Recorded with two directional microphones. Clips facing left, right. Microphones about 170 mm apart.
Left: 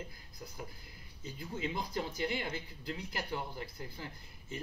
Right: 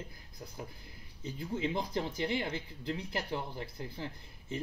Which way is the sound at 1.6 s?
25° right (ahead or behind).